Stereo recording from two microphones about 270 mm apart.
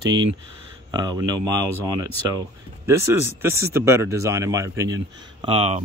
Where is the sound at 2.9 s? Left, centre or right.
Centre.